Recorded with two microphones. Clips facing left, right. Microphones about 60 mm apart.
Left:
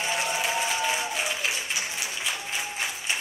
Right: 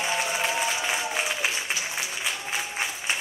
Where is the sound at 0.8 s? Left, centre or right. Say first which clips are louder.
Even; centre.